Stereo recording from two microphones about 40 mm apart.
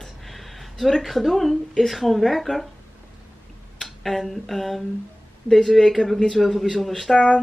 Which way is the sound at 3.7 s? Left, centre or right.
Centre.